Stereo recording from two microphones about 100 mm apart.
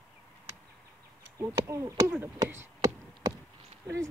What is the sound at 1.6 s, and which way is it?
Speech, 35° right (ahead or behind).